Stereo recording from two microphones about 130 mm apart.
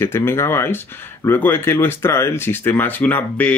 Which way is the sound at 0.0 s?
20° left (ahead or behind).